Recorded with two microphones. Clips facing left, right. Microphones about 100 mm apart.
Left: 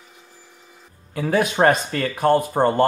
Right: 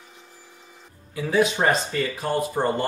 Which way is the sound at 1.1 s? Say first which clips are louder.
Left 1 dB; 55° left (ahead or behind).